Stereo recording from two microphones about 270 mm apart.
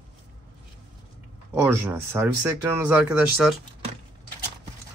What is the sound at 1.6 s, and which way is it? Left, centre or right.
Speech, centre.